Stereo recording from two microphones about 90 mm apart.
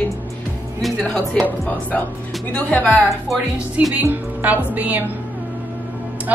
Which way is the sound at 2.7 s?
15° left (ahead or behind).